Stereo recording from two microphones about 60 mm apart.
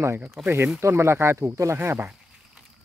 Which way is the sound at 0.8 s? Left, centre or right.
Right.